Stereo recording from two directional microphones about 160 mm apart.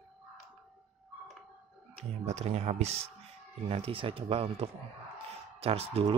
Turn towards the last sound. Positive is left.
turn(degrees=-40)  # may be behind; listen again after turning